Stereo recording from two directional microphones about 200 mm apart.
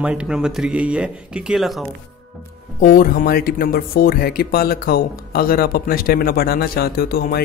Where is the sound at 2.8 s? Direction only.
45° left (ahead or behind).